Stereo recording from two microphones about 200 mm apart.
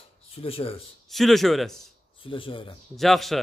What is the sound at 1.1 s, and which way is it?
Speech, centre (ahead or behind).